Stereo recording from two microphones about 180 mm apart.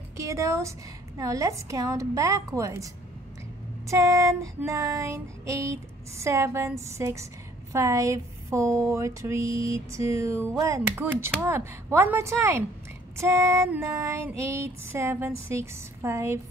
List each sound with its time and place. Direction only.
0.2 s female singing: 15° right (ahead or behind)